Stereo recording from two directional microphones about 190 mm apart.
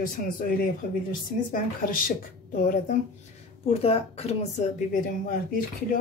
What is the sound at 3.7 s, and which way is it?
Speech, 30° left (ahead or behind).